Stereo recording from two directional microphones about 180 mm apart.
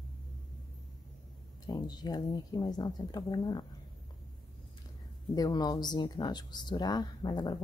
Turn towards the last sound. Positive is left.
turn(degrees=20)  # may be behind; listen again after turning